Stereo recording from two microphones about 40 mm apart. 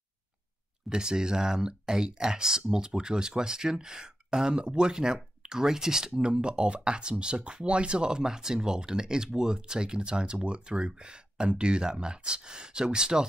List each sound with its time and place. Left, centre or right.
0.8 s speech: centre